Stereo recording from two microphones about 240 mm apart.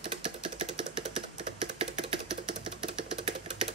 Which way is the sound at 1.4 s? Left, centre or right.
Right.